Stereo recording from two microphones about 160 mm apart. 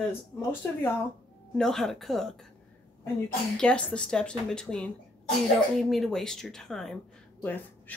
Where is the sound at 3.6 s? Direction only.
5° left (ahead or behind).